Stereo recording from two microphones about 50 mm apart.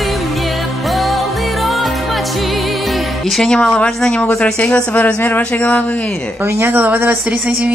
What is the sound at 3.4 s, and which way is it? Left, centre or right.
Speech, centre.